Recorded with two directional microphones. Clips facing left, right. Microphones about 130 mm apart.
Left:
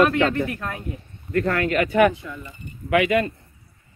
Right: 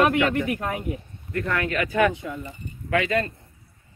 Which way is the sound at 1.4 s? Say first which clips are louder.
Left 4 dB; 35° left (ahead or behind).